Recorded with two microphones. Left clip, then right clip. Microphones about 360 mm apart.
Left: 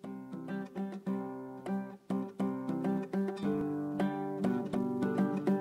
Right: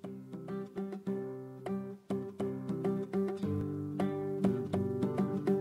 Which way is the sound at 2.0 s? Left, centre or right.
Left.